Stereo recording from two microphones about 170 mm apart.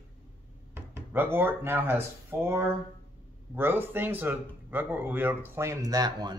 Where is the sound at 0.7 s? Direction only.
10° right (ahead or behind).